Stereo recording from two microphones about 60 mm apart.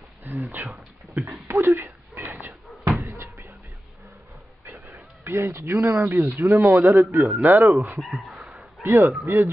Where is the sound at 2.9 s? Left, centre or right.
Right.